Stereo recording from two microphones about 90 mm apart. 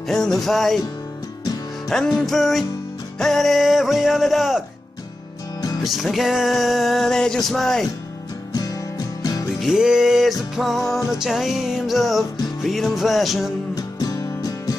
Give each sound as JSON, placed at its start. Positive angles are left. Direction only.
{"t": 0.1, "sound": "music", "side_deg": 5}
{"t": 1.9, "sound": "music", "side_deg": 5}
{"t": 5.6, "sound": "music", "side_deg": 45}
{"t": 5.9, "sound": "music", "side_deg": 0}
{"t": 9.2, "sound": "music", "side_deg": 45}
{"t": 9.6, "sound": "music", "side_deg": -5}
{"t": 13.7, "sound": "music", "side_deg": 45}